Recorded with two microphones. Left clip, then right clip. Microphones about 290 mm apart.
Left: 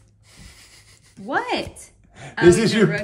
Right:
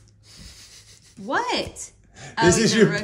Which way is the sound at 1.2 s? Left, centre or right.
Centre.